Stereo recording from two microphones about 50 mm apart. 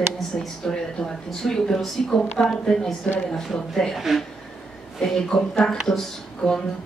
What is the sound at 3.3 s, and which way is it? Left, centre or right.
Speech, centre.